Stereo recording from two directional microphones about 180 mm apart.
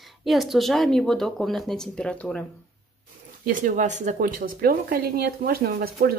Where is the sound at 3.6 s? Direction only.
40° right (ahead or behind).